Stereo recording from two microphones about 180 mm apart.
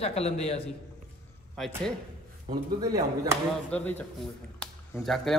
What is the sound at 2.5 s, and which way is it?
Speech, 20° right (ahead or behind).